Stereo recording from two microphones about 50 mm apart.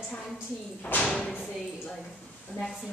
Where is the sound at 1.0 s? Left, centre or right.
Centre.